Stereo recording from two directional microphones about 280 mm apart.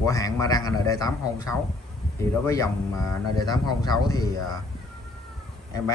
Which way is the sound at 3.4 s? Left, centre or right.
Centre.